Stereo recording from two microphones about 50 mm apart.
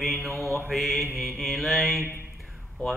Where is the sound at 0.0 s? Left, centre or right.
Centre.